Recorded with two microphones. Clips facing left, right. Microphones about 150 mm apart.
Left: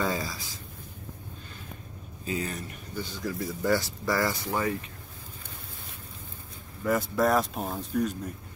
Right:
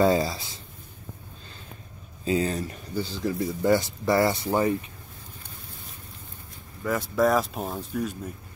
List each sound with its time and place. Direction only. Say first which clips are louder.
0.0 s speech: right 9 dB; 30° right (ahead or behind)
2.3 s speech: right 7 dB; 30° right (ahead or behind)
6.8 s speech: right 2 dB; centre (ahead or behind)